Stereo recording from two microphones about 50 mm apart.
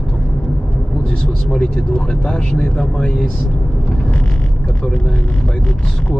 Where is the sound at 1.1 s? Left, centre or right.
Centre.